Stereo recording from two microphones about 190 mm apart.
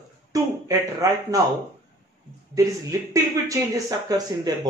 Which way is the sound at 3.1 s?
20° right (ahead or behind).